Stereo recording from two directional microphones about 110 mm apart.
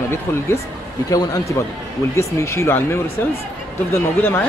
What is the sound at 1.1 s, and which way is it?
Speech, 30° left (ahead or behind).